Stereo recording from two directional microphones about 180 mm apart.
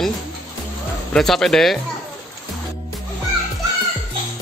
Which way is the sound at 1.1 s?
5° left (ahead or behind).